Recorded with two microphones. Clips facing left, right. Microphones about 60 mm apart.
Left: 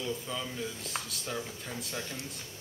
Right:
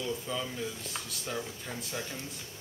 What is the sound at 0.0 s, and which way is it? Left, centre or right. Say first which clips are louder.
Speech: right 1 dB; centre.